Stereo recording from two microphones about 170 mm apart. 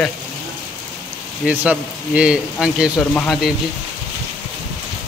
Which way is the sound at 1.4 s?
5° right (ahead or behind).